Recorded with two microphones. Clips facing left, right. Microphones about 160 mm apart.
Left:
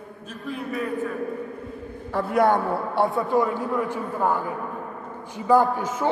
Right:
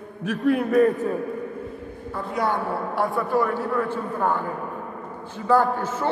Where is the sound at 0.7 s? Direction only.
50° right (ahead or behind).